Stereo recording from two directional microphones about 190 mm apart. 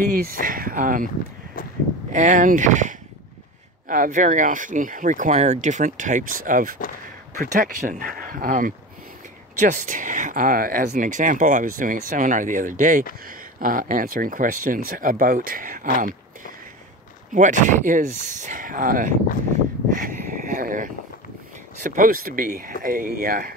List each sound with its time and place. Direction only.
0.1 s speech: 45° right (ahead or behind)
2.1 s speech: 40° right (ahead or behind)
19.9 s a sound: 45° right (ahead or behind)
21.8 s speech: 45° right (ahead or behind)